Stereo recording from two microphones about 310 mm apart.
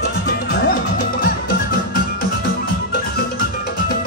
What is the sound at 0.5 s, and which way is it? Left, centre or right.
Music, left.